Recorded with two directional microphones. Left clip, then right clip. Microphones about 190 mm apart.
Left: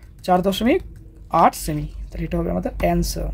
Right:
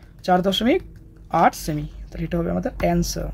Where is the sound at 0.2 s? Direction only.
Centre (ahead or behind).